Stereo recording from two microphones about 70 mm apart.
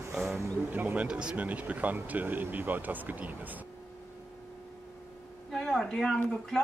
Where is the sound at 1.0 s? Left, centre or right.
Centre.